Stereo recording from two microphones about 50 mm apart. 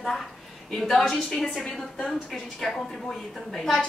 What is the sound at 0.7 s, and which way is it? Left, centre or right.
Speech, centre.